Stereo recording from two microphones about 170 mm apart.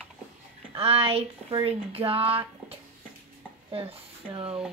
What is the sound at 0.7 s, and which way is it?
Speech, 35° right (ahead or behind).